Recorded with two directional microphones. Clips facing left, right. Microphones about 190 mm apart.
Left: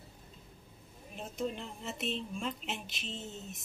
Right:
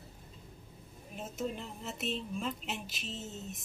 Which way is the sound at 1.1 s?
5° right (ahead or behind).